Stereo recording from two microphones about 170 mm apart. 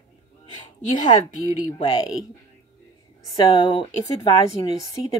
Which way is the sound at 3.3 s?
20° left (ahead or behind).